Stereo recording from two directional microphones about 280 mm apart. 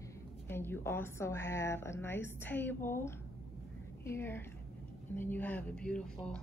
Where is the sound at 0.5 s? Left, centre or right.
Centre.